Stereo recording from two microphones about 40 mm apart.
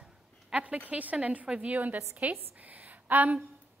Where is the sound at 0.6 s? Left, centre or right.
Right.